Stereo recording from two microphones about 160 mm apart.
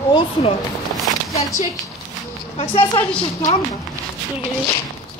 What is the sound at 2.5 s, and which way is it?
Speech, 35° left (ahead or behind).